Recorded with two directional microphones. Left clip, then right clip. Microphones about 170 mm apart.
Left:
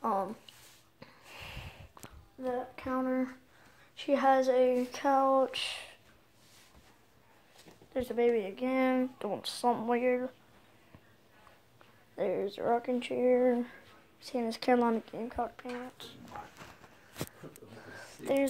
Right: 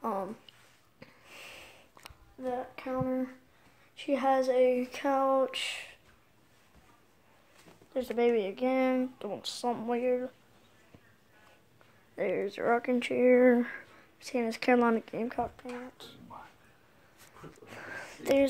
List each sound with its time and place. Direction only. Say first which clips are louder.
0.0 s a sound: left 2 dB; 20° right (ahead or behind)
2.0 s a sound: even; centre (ahead or behind)
3.9 s speech: left 1 dB; 10° right (ahead or behind)
7.9 s speech: right 1 dB; 20° right (ahead or behind)
8.2 s speech: right 2 dB; 30° right (ahead or behind)
8.7 s speech: left 1 dB; 10° right (ahead or behind)
9.2 s speech: left 3 dB; centre (ahead or behind)
12.2 s speech: right 1 dB; 20° right (ahead or behind); by 13.7 s 35° right (ahead or behind)
14.2 s speech: right 2 dB; 20° right (ahead or behind)
15.1 s speech: right 3 dB; 35° right (ahead or behind)
17.6 s a sound: right 9 dB; 45° right (ahead or behind)